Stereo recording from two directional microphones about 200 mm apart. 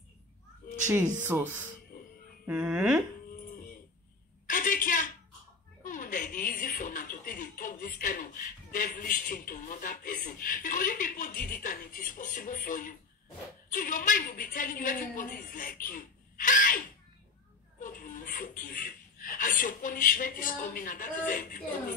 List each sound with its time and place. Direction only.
1.2 s speech: 10° right (ahead or behind)
1.9 s music: 40° left (ahead or behind)
2.4 s speech: 5° right (ahead or behind)
4.5 s a sound: 45° left (ahead or behind)
5.9 s a woman's voice: 40° left (ahead or behind)